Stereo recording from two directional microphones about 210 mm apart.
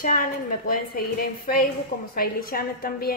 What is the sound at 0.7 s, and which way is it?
A woman's voice, 45° left (ahead or behind).